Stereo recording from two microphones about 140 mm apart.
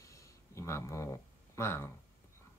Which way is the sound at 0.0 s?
20° left (ahead or behind).